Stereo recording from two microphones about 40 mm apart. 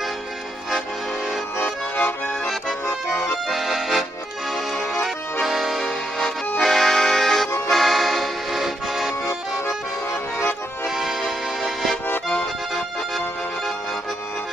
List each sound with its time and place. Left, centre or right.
1.6 s accordion: left
3.4 s accordion: centre
5.0 s accordion: centre
11.0 s music: centre